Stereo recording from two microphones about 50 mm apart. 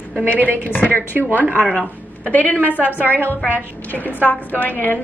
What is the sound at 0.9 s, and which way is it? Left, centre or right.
Speech, right.